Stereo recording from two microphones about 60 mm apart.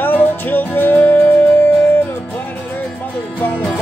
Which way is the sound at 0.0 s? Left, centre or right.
Left.